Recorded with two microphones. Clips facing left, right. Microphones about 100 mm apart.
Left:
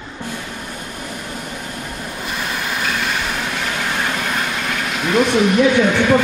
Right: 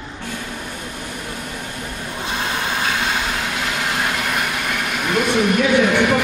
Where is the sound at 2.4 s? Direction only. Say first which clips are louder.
Right 1 dB; 30° right (ahead or behind).